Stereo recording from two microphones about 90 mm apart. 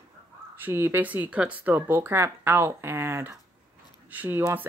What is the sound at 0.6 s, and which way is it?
Speech, 25° right (ahead or behind).